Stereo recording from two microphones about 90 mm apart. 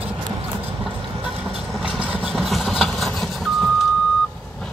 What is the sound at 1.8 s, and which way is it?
Vehicle, 15° right (ahead or behind).